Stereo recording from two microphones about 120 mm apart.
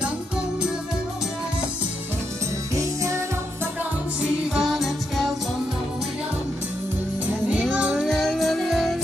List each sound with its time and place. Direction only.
2.7 s music: 25° right (ahead or behind)
4.2 s music: centre (ahead or behind)
7.7 s music: 5° right (ahead or behind)